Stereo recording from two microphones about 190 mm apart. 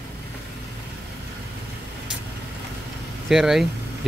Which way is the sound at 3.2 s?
Centre (ahead or behind).